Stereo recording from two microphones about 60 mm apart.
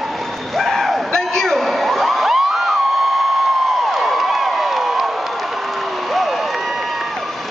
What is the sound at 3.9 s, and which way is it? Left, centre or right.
Crowd, centre.